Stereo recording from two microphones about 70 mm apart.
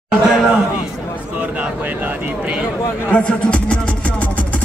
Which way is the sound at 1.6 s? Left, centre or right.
Right.